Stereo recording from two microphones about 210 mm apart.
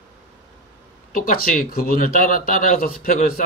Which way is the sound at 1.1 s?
40° left (ahead or behind).